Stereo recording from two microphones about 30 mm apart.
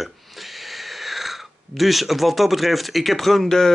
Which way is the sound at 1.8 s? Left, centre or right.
Centre.